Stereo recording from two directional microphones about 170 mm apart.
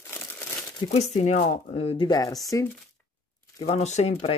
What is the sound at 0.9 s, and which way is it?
Speech, 40° left (ahead or behind).